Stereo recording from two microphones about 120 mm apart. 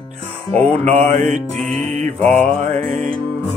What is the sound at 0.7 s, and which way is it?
Mantra, 60° right (ahead or behind).